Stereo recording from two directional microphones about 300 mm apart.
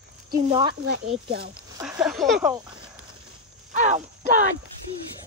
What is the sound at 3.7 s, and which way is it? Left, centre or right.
Speech, right.